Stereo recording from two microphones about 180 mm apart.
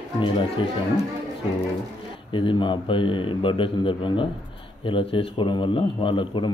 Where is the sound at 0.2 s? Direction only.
30° left (ahead or behind).